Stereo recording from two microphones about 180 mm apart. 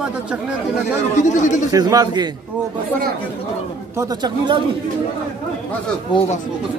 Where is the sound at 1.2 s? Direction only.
40° left (ahead or behind).